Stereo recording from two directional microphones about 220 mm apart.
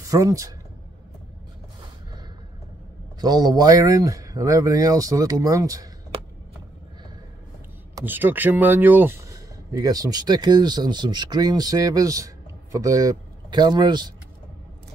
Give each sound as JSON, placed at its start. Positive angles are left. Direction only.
{"t": 0.0, "sound": "speech", "side_deg": -15}
{"t": 3.2, "sound": "speech", "side_deg": -15}
{"t": 7.9, "sound": "speech", "side_deg": -10}